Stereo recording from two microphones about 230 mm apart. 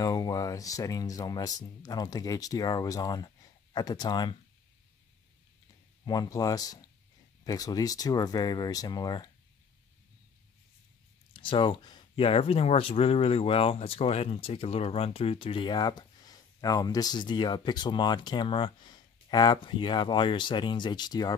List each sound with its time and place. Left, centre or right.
0.0 s speech: centre
6.0 s speech: centre
11.3 s speech: left